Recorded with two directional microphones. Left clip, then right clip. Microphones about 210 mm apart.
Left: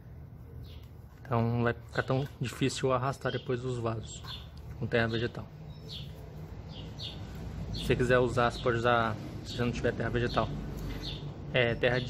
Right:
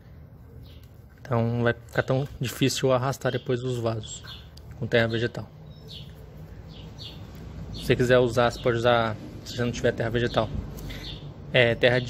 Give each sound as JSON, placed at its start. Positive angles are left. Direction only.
{"t": 1.2, "sound": "speech", "side_deg": -10}
{"t": 7.8, "sound": "a man's voice", "side_deg": -15}